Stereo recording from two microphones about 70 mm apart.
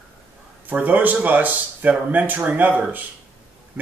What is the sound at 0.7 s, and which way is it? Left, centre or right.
Speech, right.